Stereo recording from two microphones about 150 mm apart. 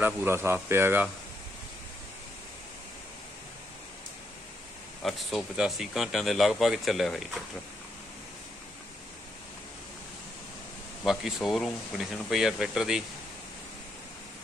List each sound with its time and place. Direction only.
0.0 s a man's voice: 15° right (ahead or behind)
5.0 s speech: centre (ahead or behind)
11.1 s speech: centre (ahead or behind)